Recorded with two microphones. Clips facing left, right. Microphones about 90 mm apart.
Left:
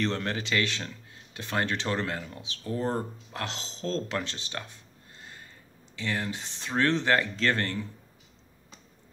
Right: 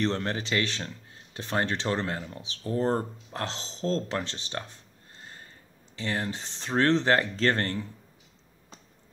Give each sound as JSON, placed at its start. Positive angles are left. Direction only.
{"t": 0.0, "sound": "speech", "side_deg": -25}
{"t": 5.2, "sound": "a sound", "side_deg": -35}
{"t": 5.9, "sound": "speech", "side_deg": -35}